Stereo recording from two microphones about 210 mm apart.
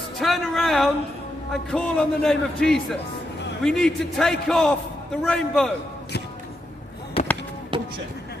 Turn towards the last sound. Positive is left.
turn(degrees=-25)  # may be behind; listen again after turning